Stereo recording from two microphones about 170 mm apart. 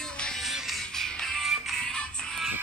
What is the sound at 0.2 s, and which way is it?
Music, centre (ahead or behind).